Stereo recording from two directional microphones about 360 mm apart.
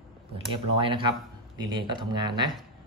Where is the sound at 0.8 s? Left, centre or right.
Centre.